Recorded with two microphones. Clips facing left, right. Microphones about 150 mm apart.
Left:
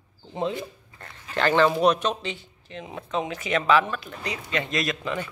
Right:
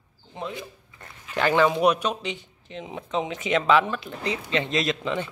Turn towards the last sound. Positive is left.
turn(degrees=-20)  # may be behind; listen again after turning